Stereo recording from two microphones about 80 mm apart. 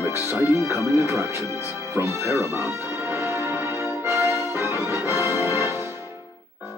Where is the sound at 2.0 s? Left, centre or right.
Right.